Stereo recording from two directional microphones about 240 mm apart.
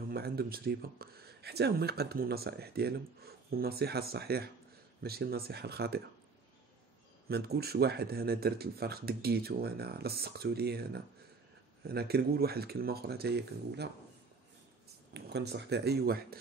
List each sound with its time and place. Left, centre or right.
0.1 s speech: right
7.2 s speech: right
15.1 s speech: right